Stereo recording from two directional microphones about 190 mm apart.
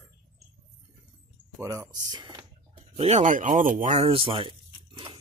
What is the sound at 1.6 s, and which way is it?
Speech, 15° right (ahead or behind).